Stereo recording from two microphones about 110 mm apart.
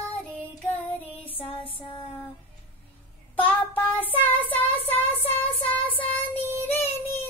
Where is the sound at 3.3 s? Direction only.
15° left (ahead or behind).